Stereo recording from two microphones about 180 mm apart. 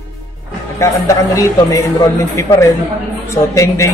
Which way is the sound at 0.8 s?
15° left (ahead or behind).